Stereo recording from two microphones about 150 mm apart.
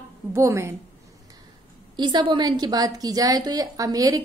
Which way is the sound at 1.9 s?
30° right (ahead or behind).